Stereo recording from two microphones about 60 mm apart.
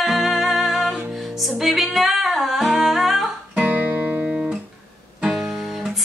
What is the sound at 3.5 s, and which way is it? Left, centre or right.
Music, right.